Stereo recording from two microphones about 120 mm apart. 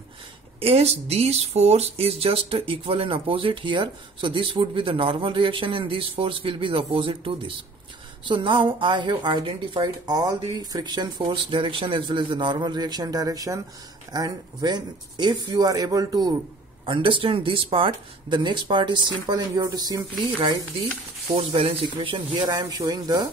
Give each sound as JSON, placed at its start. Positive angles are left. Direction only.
{"t": 0.6, "sound": "speech", "side_deg": -55}
{"t": 16.8, "sound": "speech", "side_deg": -45}
{"t": 21.3, "sound": "speech", "side_deg": -50}